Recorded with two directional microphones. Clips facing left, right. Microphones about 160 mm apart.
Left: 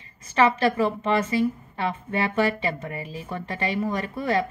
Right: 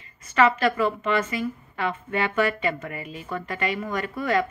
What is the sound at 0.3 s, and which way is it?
A woman's voice, 30° left (ahead or behind).